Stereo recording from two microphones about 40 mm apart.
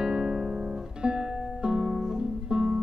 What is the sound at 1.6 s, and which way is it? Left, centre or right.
Music, centre.